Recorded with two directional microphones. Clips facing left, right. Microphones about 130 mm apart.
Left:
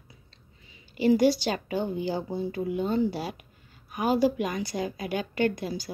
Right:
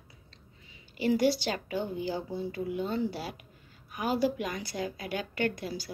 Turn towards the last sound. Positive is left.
turn(degrees=20)  # may be behind; listen again after turning